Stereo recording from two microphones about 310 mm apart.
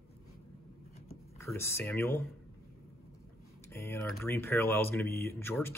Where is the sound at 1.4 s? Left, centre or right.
Centre.